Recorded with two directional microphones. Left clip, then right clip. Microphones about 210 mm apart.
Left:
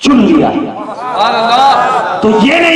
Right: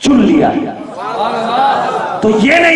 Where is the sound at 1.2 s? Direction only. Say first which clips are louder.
Left 5 dB; 20° left (ahead or behind).